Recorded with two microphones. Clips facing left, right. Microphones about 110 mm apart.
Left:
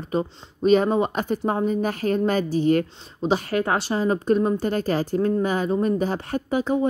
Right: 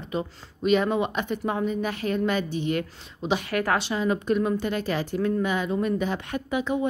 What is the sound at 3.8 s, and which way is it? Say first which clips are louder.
Speech: left 3 dB; 40° left (ahead or behind).